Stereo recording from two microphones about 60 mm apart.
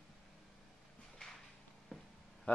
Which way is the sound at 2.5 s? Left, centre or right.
Left.